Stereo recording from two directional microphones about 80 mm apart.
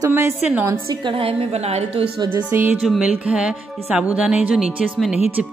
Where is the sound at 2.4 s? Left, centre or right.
Centre.